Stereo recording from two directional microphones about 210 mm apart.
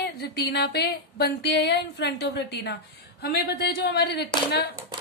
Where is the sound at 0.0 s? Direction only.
50° left (ahead or behind).